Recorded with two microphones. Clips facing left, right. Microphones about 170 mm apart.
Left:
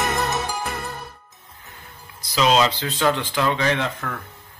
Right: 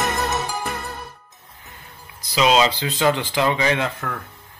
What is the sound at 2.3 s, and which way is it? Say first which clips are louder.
Speech: right 1 dB; 10° right (ahead or behind).